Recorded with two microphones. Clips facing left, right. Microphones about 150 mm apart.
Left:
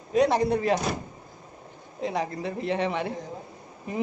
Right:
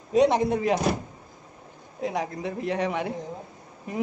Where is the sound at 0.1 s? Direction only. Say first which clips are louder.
Right 2 dB; 25° right (ahead or behind).